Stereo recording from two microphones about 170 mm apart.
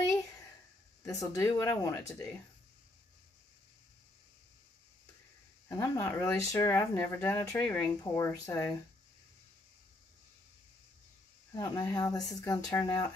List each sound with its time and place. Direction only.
1.0 s speech: 15° left (ahead or behind)
5.7 s speech: 15° left (ahead or behind)
11.5 s speech: 20° left (ahead or behind)